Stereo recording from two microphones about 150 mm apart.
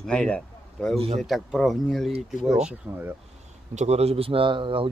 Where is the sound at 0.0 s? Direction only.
5° left (ahead or behind).